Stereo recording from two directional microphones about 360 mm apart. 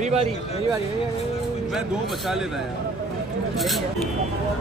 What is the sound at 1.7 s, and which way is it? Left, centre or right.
Speech, centre.